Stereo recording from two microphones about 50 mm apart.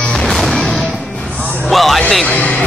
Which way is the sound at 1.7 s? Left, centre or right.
Centre.